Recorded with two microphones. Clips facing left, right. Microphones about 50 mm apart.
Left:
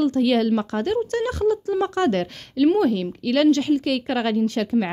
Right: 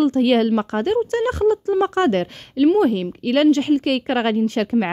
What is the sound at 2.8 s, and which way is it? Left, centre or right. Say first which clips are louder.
Speech: right 2 dB; right.